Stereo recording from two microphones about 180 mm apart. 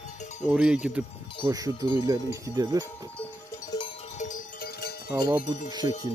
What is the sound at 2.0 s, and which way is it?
Speech, 20° right (ahead or behind).